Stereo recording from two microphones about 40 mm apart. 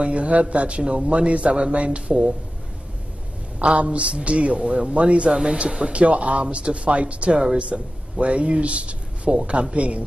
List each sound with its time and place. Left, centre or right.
0.0 s a man's voice: right
3.5 s a man's voice: right
4.6 s a man's voice: centre
7.2 s a man's voice: centre